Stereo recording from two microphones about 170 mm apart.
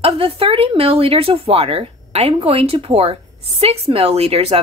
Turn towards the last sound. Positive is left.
turn(degrees=-35)  # may be behind; listen again after turning